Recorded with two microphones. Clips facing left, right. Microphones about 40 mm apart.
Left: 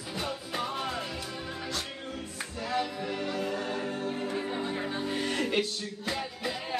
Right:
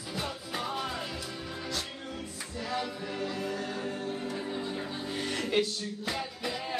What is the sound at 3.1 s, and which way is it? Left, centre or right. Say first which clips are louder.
Music: left 2 dB; left.